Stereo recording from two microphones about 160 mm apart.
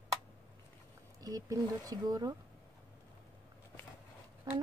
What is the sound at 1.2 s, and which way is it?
Speech, 20° right (ahead or behind).